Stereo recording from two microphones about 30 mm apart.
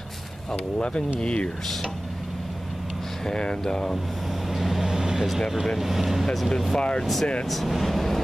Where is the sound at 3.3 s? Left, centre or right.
Left.